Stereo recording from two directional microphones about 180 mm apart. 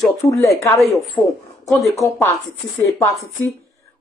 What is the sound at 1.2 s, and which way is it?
Speech, centre (ahead or behind).